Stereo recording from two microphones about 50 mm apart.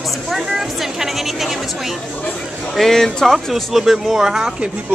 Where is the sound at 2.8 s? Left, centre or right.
Centre.